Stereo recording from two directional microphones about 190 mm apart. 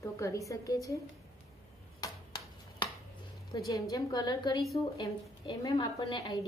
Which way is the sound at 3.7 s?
20° left (ahead or behind).